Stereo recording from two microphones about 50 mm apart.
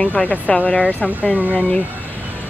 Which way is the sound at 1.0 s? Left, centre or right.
Right.